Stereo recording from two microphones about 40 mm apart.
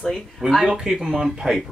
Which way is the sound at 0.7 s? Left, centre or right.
Centre.